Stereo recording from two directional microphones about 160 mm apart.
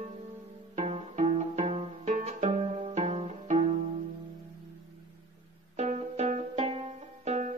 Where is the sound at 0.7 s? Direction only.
40° right (ahead or behind).